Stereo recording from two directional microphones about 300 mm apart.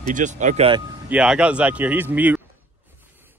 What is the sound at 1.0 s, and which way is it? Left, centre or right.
Speech, centre.